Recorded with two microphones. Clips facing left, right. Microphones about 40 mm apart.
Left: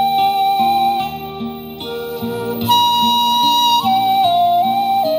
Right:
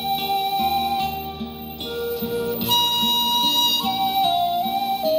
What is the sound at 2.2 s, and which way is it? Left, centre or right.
Music, left.